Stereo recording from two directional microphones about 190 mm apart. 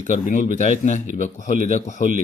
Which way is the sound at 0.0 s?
40° left (ahead or behind).